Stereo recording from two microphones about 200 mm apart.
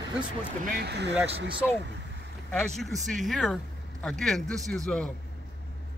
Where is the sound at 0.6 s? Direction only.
50° right (ahead or behind).